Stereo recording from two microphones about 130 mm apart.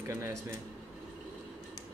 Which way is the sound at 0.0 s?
20° right (ahead or behind).